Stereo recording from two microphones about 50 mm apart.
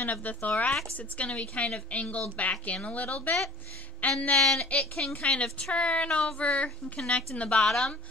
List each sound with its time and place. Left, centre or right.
0.0 s a woman's voice: left
7.6 s speech: centre